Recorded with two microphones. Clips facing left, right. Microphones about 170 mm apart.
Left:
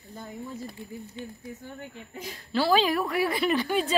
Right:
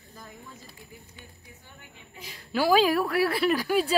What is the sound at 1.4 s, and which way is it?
Speech, 45° left (ahead or behind).